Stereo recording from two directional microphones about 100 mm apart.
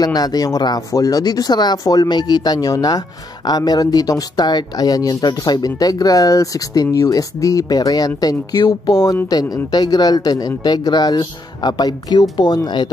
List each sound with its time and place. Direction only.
0.0 s speech: 40° left (ahead or behind)